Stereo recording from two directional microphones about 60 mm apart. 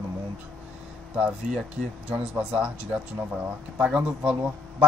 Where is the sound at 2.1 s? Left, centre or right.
Centre.